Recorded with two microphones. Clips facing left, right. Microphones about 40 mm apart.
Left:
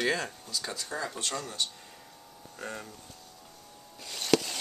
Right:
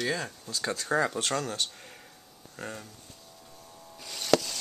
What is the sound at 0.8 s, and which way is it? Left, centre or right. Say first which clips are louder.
Speech: right 8 dB; right.